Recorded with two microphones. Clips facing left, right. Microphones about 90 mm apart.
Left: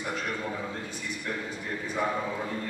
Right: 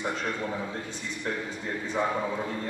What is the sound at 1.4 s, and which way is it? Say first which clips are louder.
Speech: right 1 dB; 25° right (ahead or behind).